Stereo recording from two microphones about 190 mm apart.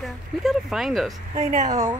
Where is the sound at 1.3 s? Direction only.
40° right (ahead or behind).